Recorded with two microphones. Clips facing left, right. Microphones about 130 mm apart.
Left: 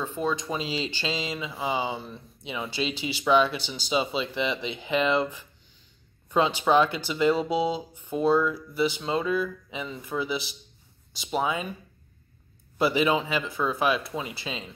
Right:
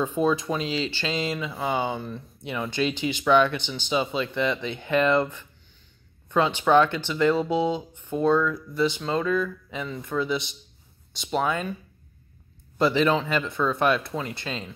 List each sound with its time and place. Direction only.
0.0 s speech: 15° right (ahead or behind)
0.5 s speech: 5° left (ahead or behind)
1.3 s speech: 5° left (ahead or behind)
12.7 s speech: 10° left (ahead or behind)